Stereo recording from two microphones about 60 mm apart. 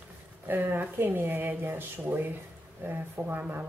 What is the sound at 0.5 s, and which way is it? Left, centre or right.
Speech, right.